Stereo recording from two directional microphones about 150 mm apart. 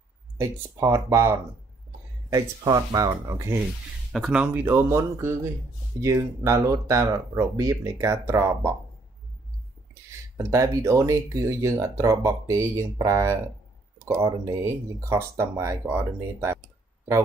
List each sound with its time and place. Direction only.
0.4 s speech: 20° right (ahead or behind)
4.1 s speech: 5° right (ahead or behind)
10.3 s speech: 20° right (ahead or behind)